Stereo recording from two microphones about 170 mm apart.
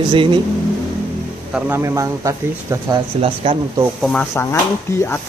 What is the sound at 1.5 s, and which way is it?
Speech, 15° right (ahead or behind).